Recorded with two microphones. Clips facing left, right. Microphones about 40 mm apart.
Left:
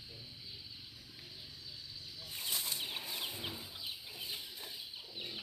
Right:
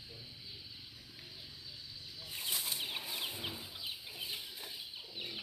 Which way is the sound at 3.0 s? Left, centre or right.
Right.